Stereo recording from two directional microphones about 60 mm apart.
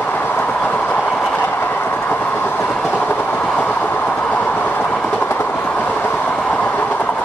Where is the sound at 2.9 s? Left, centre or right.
Left.